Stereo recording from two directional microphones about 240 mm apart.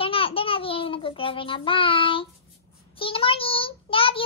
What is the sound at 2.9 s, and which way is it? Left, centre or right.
Child singing, left.